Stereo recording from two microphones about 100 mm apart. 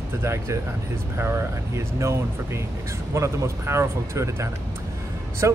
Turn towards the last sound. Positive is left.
turn(degrees=-30)  # may be behind; listen again after turning